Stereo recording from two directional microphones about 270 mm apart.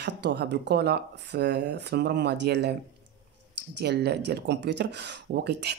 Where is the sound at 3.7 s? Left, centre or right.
Right.